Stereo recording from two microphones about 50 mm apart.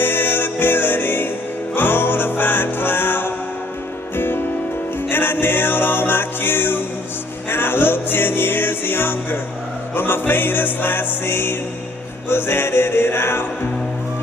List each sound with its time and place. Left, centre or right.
0.0 s music: left
5.1 s music: left